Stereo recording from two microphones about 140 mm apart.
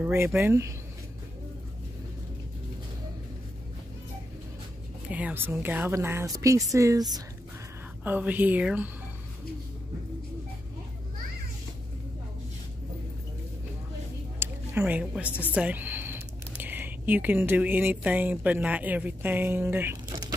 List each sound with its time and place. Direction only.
0.0 s speech: 15° right (ahead or behind)
5.1 s speech: 10° right (ahead or behind)
8.0 s speech: 10° right (ahead or behind)
14.4 s a woman's voice: 15° right (ahead or behind)
20.1 s typing: 30° right (ahead or behind)